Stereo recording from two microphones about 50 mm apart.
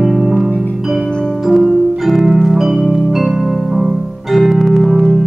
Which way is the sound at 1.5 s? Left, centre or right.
Centre.